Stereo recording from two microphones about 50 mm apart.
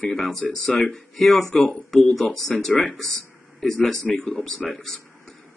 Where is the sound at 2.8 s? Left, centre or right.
Centre.